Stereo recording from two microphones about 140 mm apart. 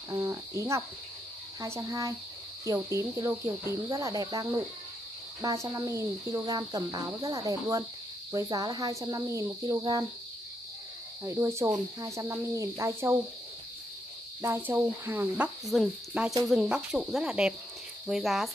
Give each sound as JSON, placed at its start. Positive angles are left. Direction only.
{"t": 0.1, "sound": "speech", "side_deg": -25}
{"t": 11.2, "sound": "speech", "side_deg": -20}
{"t": 14.4, "sound": "cricket", "side_deg": -15}